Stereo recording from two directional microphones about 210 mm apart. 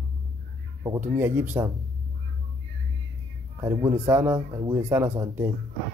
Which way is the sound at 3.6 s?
15° right (ahead or behind).